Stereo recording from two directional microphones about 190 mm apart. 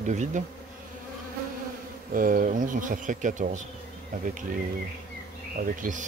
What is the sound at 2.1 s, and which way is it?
Speech, 45° right (ahead or behind).